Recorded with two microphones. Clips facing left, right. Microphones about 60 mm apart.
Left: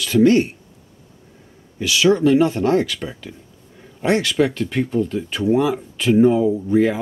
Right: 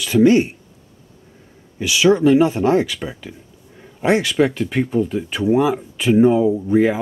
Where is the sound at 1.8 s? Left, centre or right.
Centre.